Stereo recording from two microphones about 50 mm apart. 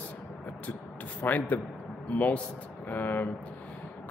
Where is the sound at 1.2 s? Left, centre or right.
Left.